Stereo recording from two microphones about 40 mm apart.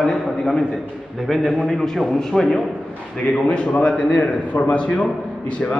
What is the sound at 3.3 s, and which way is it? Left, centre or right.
A man's voice, left.